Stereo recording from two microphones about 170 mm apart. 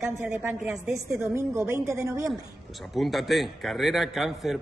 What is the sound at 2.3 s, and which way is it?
A man's voice, centre (ahead or behind).